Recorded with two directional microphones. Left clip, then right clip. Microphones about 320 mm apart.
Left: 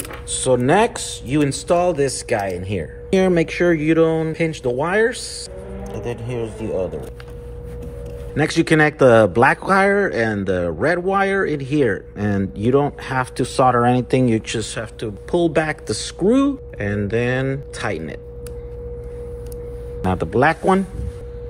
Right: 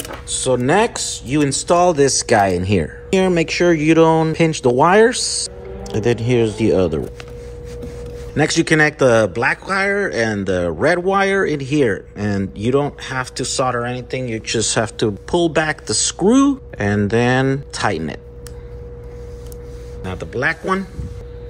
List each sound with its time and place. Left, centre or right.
0.3 s speech: centre
3.1 s speech: centre
6.0 s speech: right
6.7 s speech: right
8.4 s speech: centre
14.6 s speech: centre
20.0 s speech: centre